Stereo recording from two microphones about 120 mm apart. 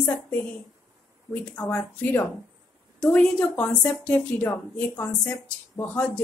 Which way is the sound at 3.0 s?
10° left (ahead or behind).